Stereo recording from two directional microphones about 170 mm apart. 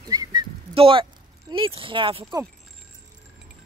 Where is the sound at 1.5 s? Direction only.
30° right (ahead or behind).